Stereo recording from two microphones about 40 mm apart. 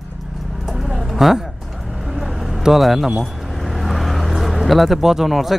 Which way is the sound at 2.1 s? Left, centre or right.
Centre.